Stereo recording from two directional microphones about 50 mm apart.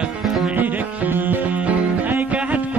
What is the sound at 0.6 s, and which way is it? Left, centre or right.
Music, right.